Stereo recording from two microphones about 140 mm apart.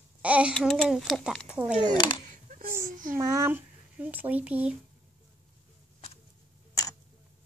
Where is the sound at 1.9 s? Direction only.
35° left (ahead or behind).